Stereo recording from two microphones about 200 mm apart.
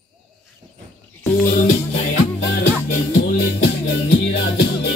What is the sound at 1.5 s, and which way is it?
Music, 35° left (ahead or behind).